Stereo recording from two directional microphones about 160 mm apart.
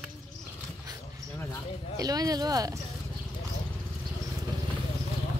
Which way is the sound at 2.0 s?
25° right (ahead or behind).